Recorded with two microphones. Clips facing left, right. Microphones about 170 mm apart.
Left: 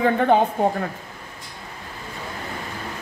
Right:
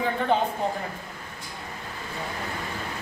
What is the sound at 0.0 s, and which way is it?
Speech, 55° left (ahead or behind).